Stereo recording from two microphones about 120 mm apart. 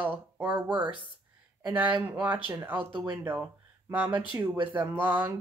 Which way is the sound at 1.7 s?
10° right (ahead or behind).